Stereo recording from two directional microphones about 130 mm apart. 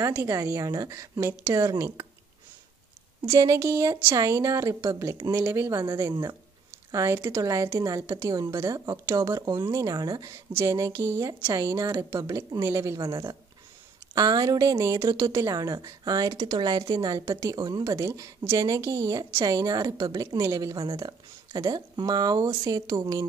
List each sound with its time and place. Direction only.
0.0 s a woman's voice: 25° right (ahead or behind)
3.3 s a woman's voice: 25° right (ahead or behind)
20.8 s speech: 35° right (ahead or behind)